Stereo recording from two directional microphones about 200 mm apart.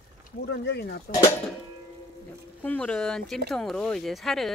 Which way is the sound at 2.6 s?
10° left (ahead or behind).